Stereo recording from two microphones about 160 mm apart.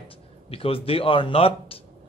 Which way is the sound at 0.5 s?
35° left (ahead or behind).